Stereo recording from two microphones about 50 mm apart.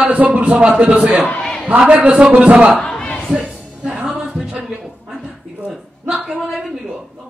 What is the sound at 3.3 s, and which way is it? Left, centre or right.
Music, centre.